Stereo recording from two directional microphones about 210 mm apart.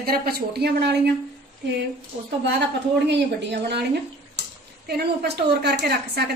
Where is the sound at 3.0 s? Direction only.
55° right (ahead or behind).